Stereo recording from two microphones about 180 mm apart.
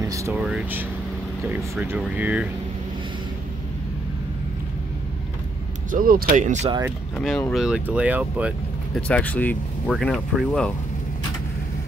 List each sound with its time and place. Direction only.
0.0 s speech: 15° right (ahead or behind)
0.3 s speech: 5° right (ahead or behind)
5.9 s speech: 50° right (ahead or behind)
7.2 s speech: 5° left (ahead or behind)
8.9 s speech: 5° left (ahead or behind)